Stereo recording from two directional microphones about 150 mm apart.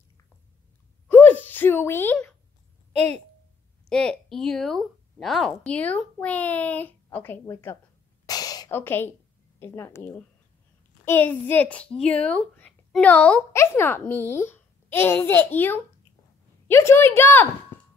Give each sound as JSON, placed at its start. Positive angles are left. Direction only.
{"t": 1.0, "sound": "a sound", "side_deg": 10}
{"t": 2.9, "sound": "a woman's voice", "side_deg": -45}
{"t": 3.9, "sound": "a woman's voice", "side_deg": 5}
{"t": 8.3, "sound": "gasp", "side_deg": 25}
{"t": 8.7, "sound": "a woman's voice", "side_deg": 15}